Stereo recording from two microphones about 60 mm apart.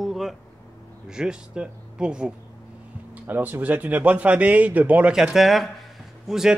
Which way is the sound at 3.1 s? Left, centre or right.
Right.